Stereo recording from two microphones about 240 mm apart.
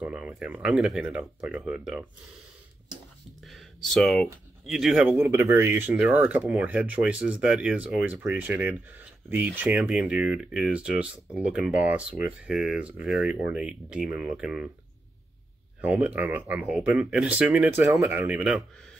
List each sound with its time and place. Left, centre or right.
0.0 s speech: centre
3.4 s speech: centre
5.2 s speech: centre
15.8 s speech: centre